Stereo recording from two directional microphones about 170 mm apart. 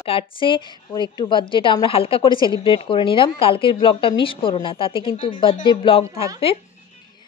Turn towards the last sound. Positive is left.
turn(degrees=35)  # may be behind; listen again after turning